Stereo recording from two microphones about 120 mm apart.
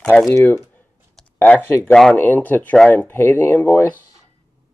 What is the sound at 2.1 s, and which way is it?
Speech, 15° left (ahead or behind).